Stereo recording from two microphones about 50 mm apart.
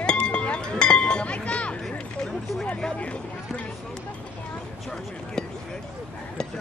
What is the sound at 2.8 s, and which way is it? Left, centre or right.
Speech, left.